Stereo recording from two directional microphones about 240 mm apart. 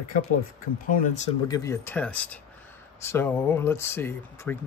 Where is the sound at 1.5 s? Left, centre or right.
Centre.